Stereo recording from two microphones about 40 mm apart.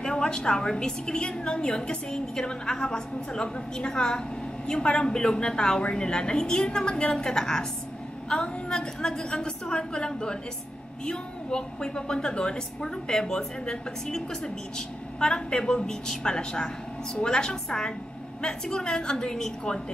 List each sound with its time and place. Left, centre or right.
0.0 s a woman's voice: left